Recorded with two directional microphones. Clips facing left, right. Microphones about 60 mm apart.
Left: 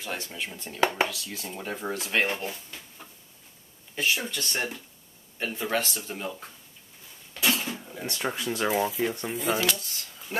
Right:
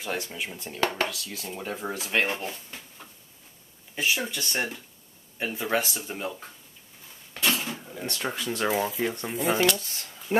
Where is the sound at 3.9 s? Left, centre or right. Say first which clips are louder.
Even; centre.